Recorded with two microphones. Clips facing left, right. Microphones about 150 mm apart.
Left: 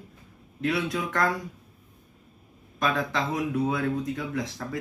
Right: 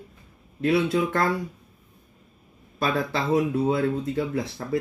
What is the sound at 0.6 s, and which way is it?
Speech, 25° right (ahead or behind).